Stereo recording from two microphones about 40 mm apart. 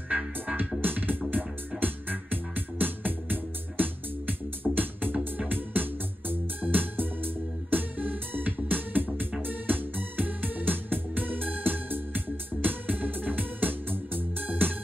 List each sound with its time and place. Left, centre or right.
0.7 s music: right
12.6 s organ: right